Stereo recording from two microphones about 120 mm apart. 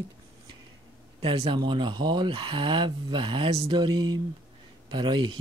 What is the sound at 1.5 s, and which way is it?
Speech, 40° right (ahead or behind).